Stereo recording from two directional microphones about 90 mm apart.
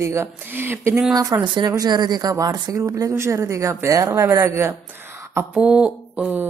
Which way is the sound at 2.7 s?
35° right (ahead or behind).